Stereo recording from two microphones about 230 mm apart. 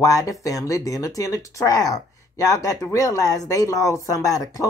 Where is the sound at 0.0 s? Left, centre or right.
Centre.